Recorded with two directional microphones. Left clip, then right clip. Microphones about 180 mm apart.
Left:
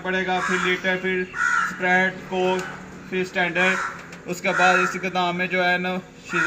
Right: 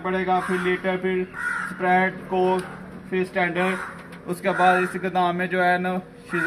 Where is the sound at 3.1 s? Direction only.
50° right (ahead or behind).